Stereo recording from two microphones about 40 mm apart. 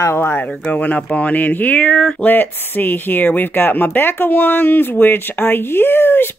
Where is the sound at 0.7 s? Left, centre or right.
Left.